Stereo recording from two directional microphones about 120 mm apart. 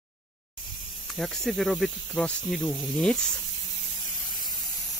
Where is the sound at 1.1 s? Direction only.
5° left (ahead or behind).